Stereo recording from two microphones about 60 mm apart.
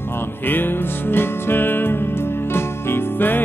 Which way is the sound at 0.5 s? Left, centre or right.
Left.